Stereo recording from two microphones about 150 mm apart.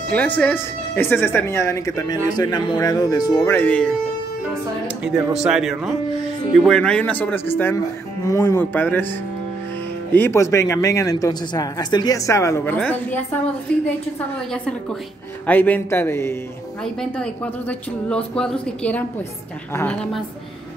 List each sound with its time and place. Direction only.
0.1 s a woman's voice: 10° left (ahead or behind); by 3.5 s 25° left (ahead or behind)
3.5 s a woman's voice: 10° left (ahead or behind)
5.4 s a man's voice: 5° right (ahead or behind)
10.1 s speech: 15° left (ahead or behind)
15.4 s a woman's voice: 10° left (ahead or behind)
16.8 s a woman's voice: 5° left (ahead or behind)